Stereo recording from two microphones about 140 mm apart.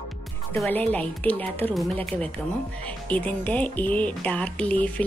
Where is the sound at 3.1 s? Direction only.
10° left (ahead or behind).